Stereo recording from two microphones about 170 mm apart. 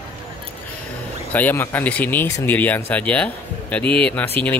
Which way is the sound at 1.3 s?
10° left (ahead or behind).